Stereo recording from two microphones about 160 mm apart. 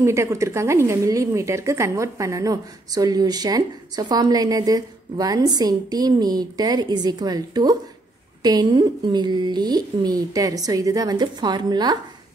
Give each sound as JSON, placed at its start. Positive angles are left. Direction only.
{"t": 0.0, "sound": "a woman's voice", "side_deg": -20}